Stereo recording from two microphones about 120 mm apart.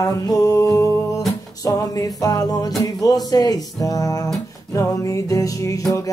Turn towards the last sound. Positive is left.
turn(degrees=25)  # may be behind; listen again after turning